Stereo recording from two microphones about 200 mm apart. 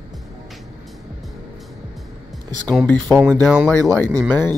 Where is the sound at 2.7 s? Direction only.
10° left (ahead or behind).